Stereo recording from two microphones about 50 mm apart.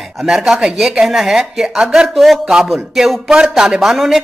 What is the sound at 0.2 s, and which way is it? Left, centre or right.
Speech, centre.